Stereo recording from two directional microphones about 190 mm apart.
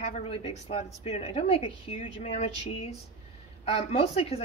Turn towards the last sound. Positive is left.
turn(degrees=35)  # may be behind; listen again after turning